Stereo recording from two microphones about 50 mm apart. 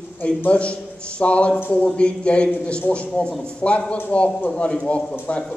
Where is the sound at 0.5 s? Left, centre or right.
Left.